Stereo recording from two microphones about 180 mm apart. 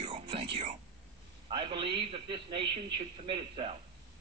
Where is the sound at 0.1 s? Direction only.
30° right (ahead or behind).